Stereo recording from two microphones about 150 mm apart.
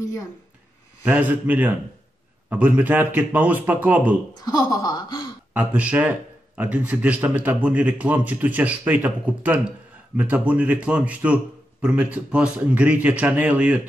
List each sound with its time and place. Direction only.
1.0 s speech: 10° right (ahead or behind)
4.8 s gasp: 25° left (ahead or behind)
5.5 s speech: 10° right (ahead or behind)